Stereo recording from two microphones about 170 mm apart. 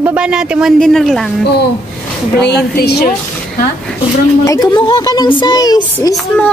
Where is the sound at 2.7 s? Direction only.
65° left (ahead or behind).